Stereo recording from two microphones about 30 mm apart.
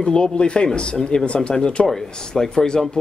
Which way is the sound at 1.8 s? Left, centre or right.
Left.